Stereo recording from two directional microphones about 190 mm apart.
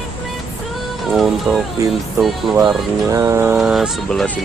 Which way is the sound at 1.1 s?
Centre (ahead or behind).